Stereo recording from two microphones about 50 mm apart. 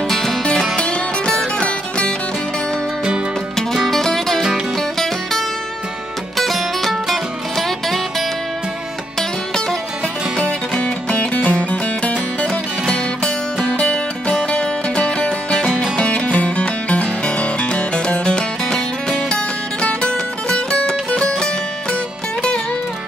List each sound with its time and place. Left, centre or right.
0.1 s music: centre
0.7 s music: left
3.7 s music: centre
10.3 s music: centre
10.8 s music: left
13.7 s music: left